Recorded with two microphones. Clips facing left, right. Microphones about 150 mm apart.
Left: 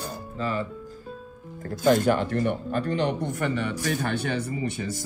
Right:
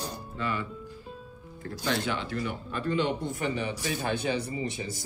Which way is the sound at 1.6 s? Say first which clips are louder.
Left 10 dB; 45° left (ahead or behind).